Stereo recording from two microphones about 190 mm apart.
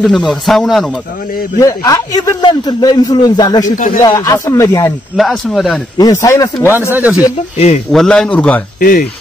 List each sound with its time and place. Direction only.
0.0 s speech: centre (ahead or behind)
1.6 s a man's voice: 15° left (ahead or behind)
3.7 s speech: 45° left (ahead or behind)
4.0 s speech: 15° left (ahead or behind)
5.1 s speech: centre (ahead or behind)
5.9 s speech: 20° left (ahead or behind)
6.9 s speech: 10° right (ahead or behind)
7.9 s speech: 5° left (ahead or behind)
8.7 s speech: 50° left (ahead or behind)